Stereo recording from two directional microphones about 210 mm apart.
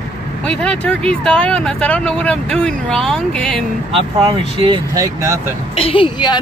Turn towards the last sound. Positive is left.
turn(degrees=20)  # may be behind; listen again after turning